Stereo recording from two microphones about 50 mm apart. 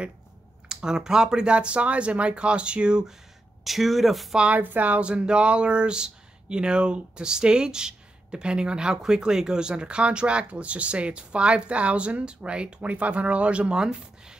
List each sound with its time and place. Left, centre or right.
0.7 s speech: centre
3.6 s speech: centre
4.6 s speech: right; by 14.3 s centre